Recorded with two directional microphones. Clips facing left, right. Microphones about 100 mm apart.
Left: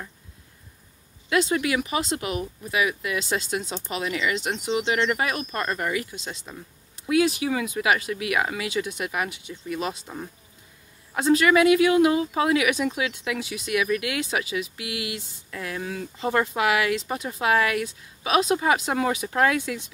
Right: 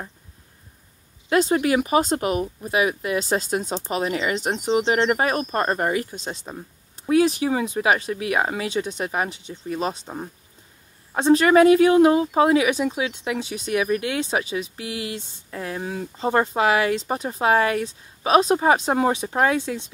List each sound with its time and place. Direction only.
1.3 s speech: 40° right (ahead or behind)